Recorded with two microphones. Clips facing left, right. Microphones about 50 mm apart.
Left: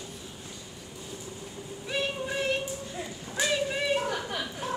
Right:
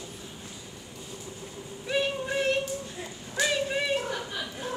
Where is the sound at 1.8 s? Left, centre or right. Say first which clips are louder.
Right 3 dB; centre.